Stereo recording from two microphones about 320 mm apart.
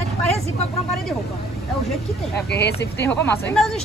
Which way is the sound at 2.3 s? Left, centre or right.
Left.